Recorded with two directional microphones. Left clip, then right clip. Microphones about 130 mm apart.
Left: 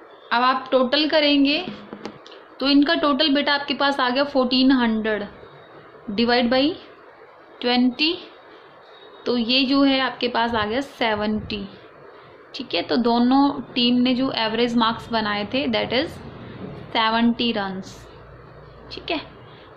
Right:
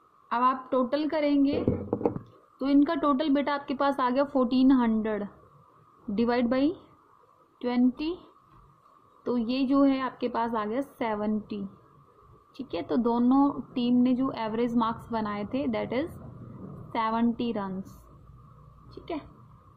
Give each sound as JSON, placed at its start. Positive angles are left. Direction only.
{"t": 0.3, "sound": "a woman's voice", "side_deg": -60}
{"t": 2.6, "sound": "a woman's voice", "side_deg": -55}
{"t": 7.5, "sound": "a woman's voice", "side_deg": -55}
{"t": 9.2, "sound": "a woman's voice", "side_deg": -70}